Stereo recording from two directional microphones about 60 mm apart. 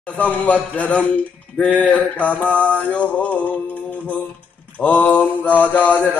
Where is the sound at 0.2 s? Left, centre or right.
Left.